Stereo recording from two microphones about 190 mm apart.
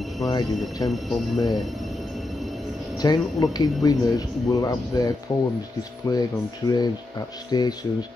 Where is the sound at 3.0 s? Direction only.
20° left (ahead or behind).